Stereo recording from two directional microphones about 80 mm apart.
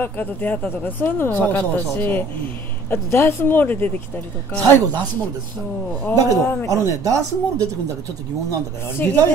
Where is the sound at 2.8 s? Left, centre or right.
Left.